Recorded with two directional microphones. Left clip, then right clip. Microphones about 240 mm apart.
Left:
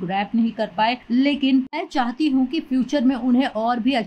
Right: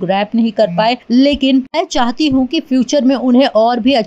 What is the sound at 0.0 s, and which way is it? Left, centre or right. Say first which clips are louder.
Speech: right 8 dB; centre.